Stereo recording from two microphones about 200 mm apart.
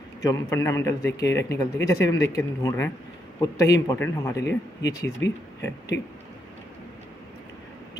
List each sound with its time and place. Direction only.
0.2 s speech: 15° left (ahead or behind)
5.2 s speech: 60° left (ahead or behind)